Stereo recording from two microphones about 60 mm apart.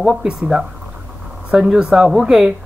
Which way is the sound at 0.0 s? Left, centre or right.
Centre.